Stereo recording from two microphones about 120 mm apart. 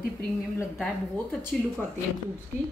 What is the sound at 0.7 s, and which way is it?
Speech, 5° left (ahead or behind).